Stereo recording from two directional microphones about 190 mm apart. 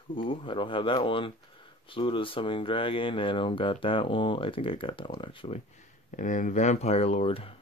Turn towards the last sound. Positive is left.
turn(degrees=30)  # may be behind; listen again after turning